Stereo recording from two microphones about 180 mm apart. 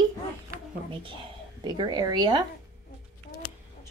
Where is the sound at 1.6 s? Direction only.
25° right (ahead or behind).